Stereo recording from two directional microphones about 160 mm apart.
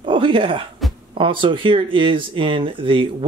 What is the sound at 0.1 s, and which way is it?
Speech, 30° right (ahead or behind).